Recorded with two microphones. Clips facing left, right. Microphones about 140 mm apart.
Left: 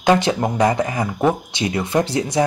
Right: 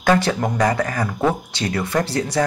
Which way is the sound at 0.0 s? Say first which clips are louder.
Left 1 dB; 20° left (ahead or behind).